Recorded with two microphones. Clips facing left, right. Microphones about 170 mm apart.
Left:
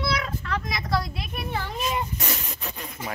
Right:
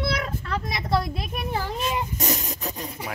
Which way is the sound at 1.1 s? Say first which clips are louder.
Right 2 dB; 40° right (ahead or behind).